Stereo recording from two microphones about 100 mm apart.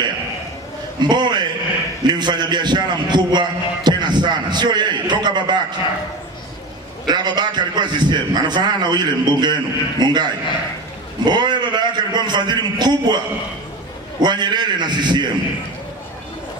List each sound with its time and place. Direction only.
1.0 s a man's voice: 50° right (ahead or behind)
7.1 s a man's voice: 45° right (ahead or behind)
14.2 s a man's voice: 45° right (ahead or behind)